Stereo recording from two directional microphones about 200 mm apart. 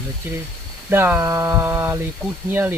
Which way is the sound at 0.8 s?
10° right (ahead or behind).